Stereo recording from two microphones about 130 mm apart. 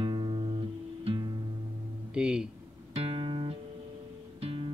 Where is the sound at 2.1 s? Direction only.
5° right (ahead or behind).